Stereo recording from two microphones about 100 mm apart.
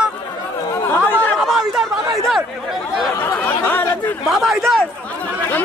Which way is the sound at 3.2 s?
20° left (ahead or behind).